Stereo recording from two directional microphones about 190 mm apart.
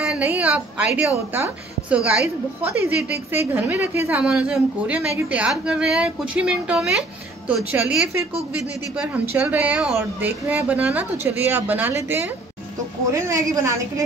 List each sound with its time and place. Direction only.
0.0 s a woman's voice: 5° right (ahead or behind)